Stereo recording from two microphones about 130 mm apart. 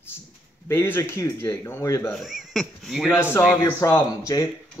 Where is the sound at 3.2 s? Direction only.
15° left (ahead or behind).